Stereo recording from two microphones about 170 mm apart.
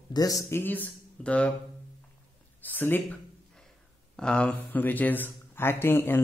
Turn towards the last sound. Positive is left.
turn(degrees=15)  # may be behind; listen again after turning